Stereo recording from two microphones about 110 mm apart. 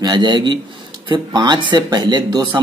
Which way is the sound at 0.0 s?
40° right (ahead or behind).